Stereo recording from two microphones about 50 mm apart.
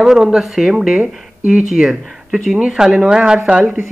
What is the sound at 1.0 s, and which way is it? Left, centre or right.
Speech, right.